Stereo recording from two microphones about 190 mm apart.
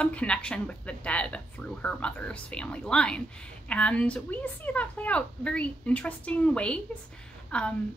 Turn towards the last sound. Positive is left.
turn(degrees=5)  # may be behind; listen again after turning